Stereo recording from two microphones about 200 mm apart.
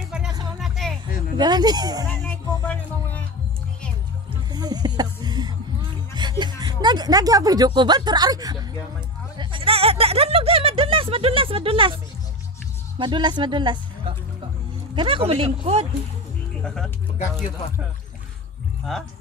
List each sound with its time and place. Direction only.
0.3 s music: 20° right (ahead or behind)
0.6 s music: centre (ahead or behind)
1.4 s speech: 20° right (ahead or behind)
2.0 s music: 10° left (ahead or behind)
4.3 s music: 20° right (ahead or behind)
6.1 s speech: 20° right (ahead or behind)
9.4 s a sound: 25° right (ahead or behind)
13.0 s speech: 25° right (ahead or behind)
16.6 s speech: 5° left (ahead or behind)